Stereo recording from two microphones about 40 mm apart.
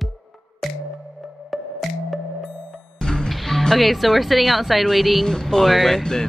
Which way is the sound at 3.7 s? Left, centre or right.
Centre.